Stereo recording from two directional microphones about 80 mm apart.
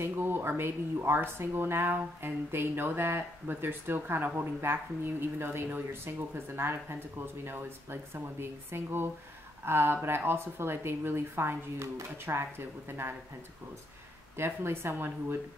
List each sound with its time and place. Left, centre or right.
0.0 s speech: right
14.3 s speech: right